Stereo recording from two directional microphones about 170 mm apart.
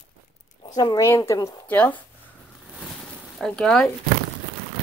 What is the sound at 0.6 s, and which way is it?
Speech, 20° left (ahead or behind).